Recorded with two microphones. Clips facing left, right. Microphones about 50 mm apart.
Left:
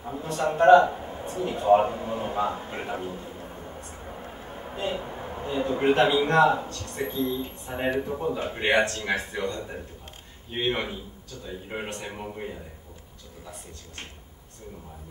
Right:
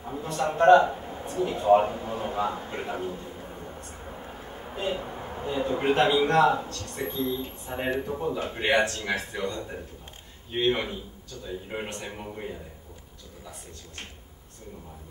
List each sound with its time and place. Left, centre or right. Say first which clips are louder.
0.0 s a man's voice: left 1 dB; centre
3.1 s a man's voice: even; left
3.3 s a sound: even; centre
5.3 s speech: even; centre